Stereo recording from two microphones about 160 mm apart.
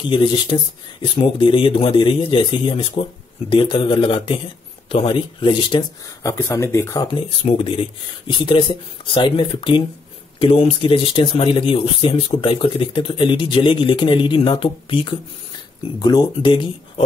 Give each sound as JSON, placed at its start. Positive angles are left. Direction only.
{"t": 0.1, "sound": "speech", "side_deg": 30}
{"t": 6.3, "sound": "speech", "side_deg": 15}
{"t": 7.1, "sound": "speech", "side_deg": 35}